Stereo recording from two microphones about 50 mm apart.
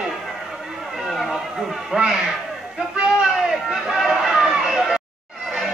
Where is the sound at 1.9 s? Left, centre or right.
Centre.